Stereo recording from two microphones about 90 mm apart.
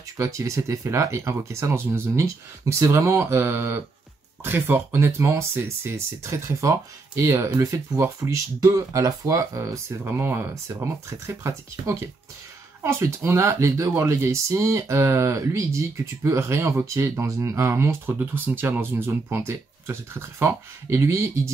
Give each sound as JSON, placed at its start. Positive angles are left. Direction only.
{"t": 0.2, "sound": "speech", "side_deg": -35}
{"t": 10.0, "sound": "speech", "side_deg": -25}